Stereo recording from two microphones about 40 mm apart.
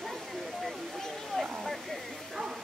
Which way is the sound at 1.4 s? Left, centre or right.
Centre.